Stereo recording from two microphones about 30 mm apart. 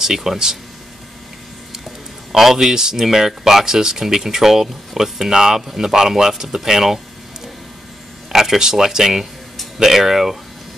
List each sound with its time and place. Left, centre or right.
0.0 s speech: centre
2.3 s speech: centre
8.3 s speech: centre